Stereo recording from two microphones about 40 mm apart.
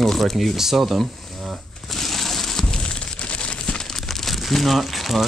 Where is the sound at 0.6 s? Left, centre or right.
Centre.